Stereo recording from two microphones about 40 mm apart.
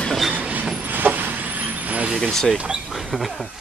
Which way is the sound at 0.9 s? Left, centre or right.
Right.